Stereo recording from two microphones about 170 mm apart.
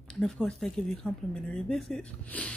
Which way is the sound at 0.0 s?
5° left (ahead or behind).